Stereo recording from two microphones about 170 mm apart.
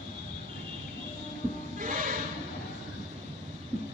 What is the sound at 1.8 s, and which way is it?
Music, 50° right (ahead or behind).